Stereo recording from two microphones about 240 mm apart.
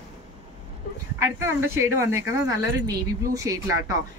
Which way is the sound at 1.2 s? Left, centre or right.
Centre.